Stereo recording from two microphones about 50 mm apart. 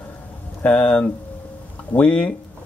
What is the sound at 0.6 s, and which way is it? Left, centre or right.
Speech, left.